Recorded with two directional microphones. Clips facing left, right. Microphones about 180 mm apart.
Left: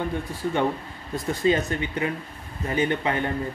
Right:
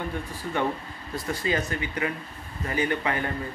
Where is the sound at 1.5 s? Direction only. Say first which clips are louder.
Left 3 dB; 25° left (ahead or behind).